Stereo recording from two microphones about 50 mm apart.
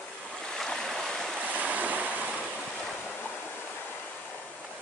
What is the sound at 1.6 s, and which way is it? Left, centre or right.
Waves, right.